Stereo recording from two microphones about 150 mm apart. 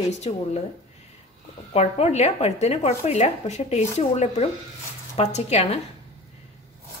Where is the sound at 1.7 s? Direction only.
45° left (ahead or behind).